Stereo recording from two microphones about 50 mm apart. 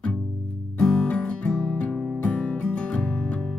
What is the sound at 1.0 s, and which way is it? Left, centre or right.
Music, left.